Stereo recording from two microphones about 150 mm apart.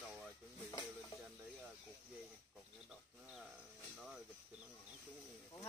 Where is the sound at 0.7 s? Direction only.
25° left (ahead or behind).